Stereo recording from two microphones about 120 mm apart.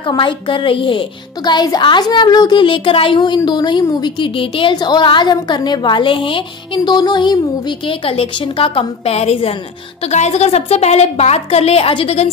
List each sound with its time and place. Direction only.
0.0 s a woman's voice: 40° left (ahead or behind)
10.0 s a woman's voice: 65° left (ahead or behind); by 12.3 s 50° left (ahead or behind)